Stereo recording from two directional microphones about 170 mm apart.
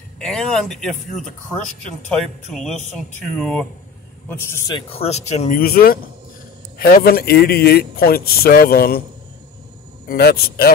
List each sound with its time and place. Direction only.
0.2 s speech: 5° left (ahead or behind)
2.5 s speech: centre (ahead or behind)
4.3 s a man's voice: 15° left (ahead or behind)
4.7 s speech: 35° left (ahead or behind)
5.6 s speech: 65° left (ahead or behind)
10.0 s speech: 65° left (ahead or behind)